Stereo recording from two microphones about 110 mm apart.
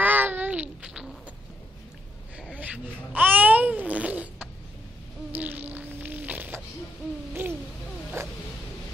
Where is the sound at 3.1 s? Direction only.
15° right (ahead or behind).